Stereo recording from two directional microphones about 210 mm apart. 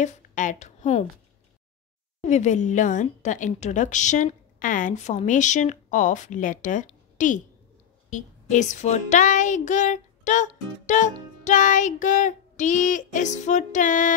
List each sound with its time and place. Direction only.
0.0 s speech: 35° left (ahead or behind)
2.2 s child singing: 35° left (ahead or behind)